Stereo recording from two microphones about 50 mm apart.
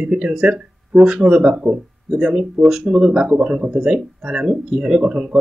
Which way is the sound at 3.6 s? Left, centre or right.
Centre.